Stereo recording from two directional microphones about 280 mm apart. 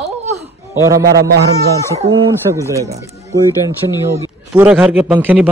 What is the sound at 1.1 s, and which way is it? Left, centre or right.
Speech, right.